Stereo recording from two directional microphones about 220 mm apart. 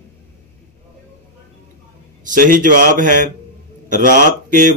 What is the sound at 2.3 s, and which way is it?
Mantra, 35° right (ahead or behind).